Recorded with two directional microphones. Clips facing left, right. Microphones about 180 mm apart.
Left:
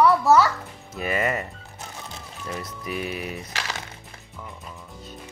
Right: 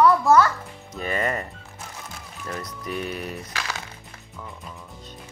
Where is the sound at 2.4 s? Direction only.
5° left (ahead or behind).